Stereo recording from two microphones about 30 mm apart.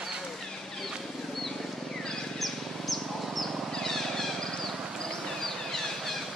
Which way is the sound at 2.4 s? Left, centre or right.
Centre.